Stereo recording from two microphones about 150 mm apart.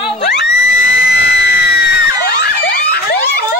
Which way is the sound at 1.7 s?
90° left.